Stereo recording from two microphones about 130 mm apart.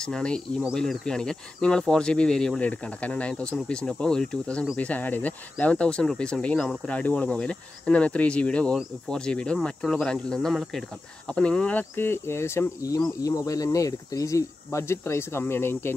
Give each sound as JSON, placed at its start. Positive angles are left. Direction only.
{"t": 0.0, "sound": "speech", "side_deg": 5}